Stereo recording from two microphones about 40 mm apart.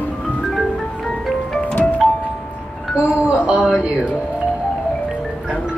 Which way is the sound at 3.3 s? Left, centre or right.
Right.